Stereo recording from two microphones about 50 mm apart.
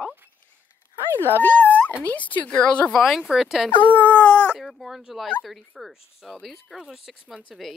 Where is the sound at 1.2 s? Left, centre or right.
Left.